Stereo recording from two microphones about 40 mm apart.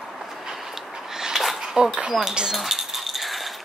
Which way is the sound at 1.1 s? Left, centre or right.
Centre.